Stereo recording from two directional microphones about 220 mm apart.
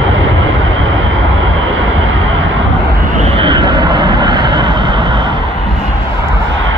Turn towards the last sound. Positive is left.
turn(degrees=-20)  # may be behind; listen again after turning